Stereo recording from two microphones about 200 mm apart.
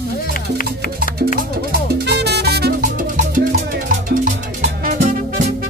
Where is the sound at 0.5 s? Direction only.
45° left (ahead or behind).